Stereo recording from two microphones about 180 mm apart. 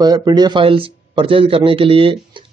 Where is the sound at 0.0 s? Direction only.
20° right (ahead or behind).